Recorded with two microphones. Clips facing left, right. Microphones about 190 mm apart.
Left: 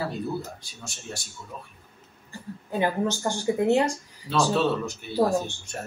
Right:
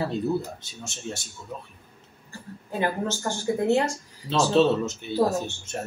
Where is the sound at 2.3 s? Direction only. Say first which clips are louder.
Left 2 dB; 15° left (ahead or behind).